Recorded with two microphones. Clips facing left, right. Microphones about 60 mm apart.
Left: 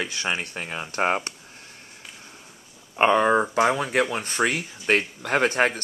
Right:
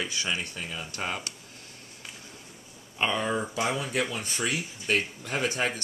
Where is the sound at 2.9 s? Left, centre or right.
Left.